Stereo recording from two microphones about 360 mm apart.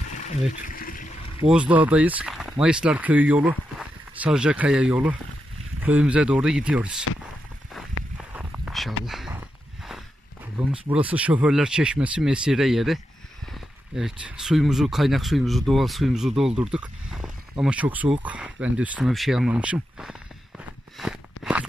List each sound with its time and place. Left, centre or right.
0.7 s boat: left
1.5 s speech: centre
8.4 s a sound: centre
9.0 s speech: centre
10.7 s speech: centre
16.7 s a sound: centre